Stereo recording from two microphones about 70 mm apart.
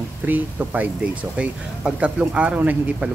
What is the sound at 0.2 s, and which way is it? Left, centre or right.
Speech, right.